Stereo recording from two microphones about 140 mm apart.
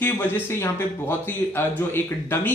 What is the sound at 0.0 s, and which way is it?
Speech, 15° left (ahead or behind).